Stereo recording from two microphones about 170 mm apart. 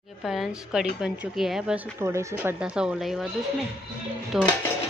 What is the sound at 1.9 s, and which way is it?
Speech, 15° right (ahead or behind).